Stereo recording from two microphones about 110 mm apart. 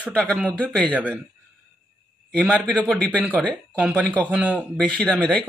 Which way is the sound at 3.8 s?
10° right (ahead or behind).